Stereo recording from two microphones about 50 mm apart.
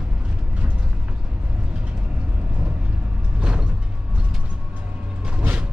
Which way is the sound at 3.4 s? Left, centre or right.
Right.